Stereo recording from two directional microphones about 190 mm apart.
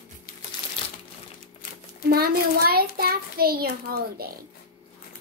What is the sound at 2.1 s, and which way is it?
A child's voice, 55° right (ahead or behind).